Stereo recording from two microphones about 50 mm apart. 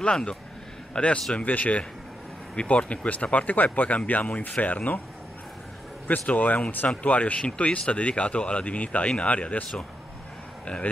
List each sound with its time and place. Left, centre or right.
0.0 s speech: centre
1.3 s speech: left
6.0 s speech: left